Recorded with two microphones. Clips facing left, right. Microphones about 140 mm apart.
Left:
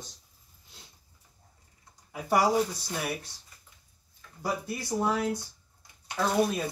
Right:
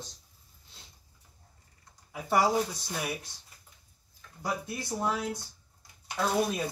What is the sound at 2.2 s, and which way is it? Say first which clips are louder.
Speech: left 2 dB; 10° left (ahead or behind).